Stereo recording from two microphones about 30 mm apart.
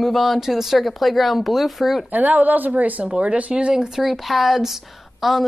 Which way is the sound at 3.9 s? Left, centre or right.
Centre.